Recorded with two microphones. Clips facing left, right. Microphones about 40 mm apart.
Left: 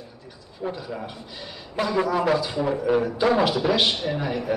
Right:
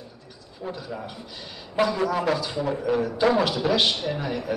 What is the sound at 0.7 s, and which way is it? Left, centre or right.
A man's voice, centre.